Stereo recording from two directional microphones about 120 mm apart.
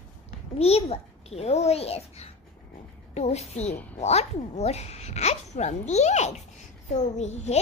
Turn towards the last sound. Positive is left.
turn(degrees=65)  # may be behind; listen again after turning